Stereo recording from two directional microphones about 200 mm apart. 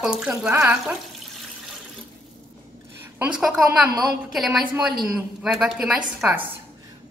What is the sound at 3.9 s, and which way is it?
Speech, 20° right (ahead or behind).